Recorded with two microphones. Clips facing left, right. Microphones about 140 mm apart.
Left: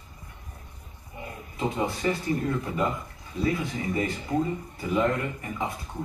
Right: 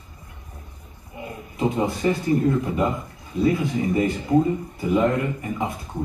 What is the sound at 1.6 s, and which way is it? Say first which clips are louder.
Speech: right 5 dB; 20° right (ahead or behind).